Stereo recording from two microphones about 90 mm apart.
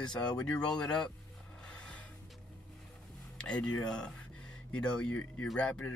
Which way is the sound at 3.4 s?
10° left (ahead or behind).